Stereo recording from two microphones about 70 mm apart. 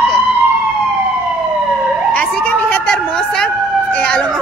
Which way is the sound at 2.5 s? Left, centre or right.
Centre.